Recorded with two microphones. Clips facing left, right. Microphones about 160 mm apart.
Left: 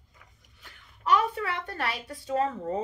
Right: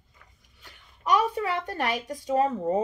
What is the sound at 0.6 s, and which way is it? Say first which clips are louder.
Speech: right 1 dB; 15° right (ahead or behind).